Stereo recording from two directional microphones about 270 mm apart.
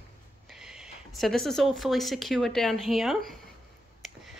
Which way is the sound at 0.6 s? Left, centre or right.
Centre.